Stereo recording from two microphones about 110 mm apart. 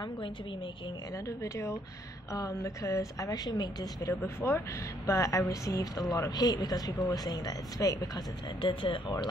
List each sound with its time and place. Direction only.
1.1 s speech: 30° left (ahead or behind)
4.4 s speech: 25° left (ahead or behind)
8.5 s speech: 50° left (ahead or behind)